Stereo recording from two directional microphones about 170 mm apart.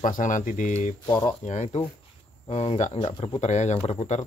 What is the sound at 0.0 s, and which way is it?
Speech, 50° left (ahead or behind).